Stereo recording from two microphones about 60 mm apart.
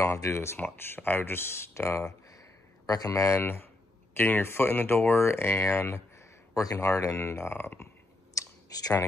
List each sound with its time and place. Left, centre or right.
0.0 s speech: left
0.8 s speech: left
2.9 s speech: left
3.3 s speech: left
6.1 s speech: left
8.4 s clicking: left